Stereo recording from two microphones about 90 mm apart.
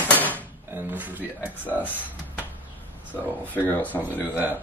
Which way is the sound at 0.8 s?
20° right (ahead or behind).